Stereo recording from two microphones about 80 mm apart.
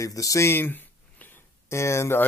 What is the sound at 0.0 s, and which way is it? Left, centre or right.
Speech, left.